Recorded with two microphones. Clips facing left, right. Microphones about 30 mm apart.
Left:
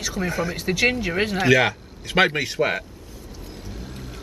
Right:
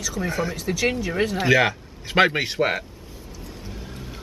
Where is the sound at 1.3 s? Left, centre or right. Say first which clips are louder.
Left 1 dB; centre.